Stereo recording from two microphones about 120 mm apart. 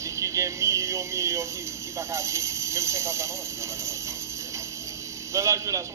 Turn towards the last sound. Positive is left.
turn(degrees=-25)  # may be behind; listen again after turning